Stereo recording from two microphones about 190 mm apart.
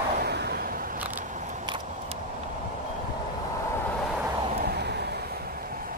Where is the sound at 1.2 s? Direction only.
40° right (ahead or behind).